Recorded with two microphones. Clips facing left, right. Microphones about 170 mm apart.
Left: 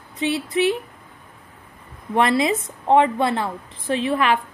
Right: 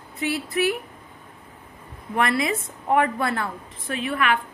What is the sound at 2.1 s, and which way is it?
A woman's voice, 25° left (ahead or behind).